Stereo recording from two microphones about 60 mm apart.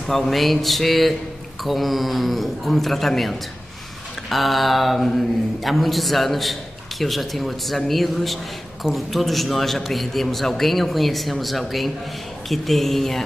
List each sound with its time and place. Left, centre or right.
0.0 s speech: centre